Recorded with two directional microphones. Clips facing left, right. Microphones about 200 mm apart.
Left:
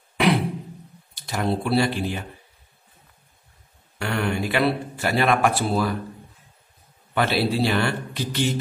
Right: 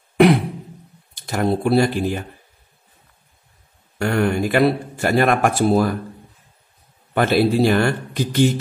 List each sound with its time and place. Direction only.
1.1 s speech: 45° right (ahead or behind)
4.0 s a man's voice: 45° right (ahead or behind)
7.2 s a man's voice: 50° right (ahead or behind)